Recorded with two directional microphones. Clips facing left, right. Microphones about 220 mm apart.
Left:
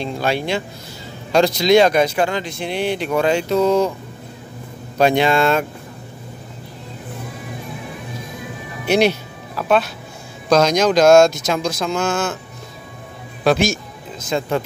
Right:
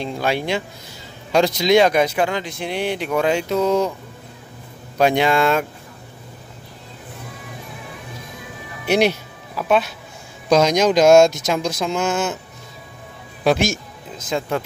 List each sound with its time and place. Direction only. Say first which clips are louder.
0.0 s speech: left 1 dB; 15° right (ahead or behind)
4.9 s speech: left 1 dB; 10° right (ahead or behind)
8.8 s speech: left 1 dB; 10° right (ahead or behind)
14.3 s speech: left 2 dB; 5° right (ahead or behind)